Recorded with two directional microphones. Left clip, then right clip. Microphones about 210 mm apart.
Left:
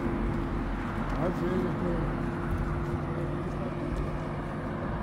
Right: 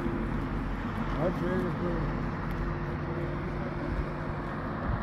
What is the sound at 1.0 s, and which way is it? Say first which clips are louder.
Vehicle: right 1 dB; 45° right (ahead or behind).